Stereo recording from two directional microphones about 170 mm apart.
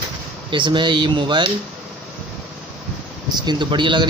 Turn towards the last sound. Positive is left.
turn(degrees=-30)  # may be behind; listen again after turning